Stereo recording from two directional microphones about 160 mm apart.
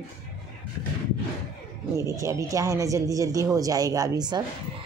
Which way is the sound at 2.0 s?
20° right (ahead or behind).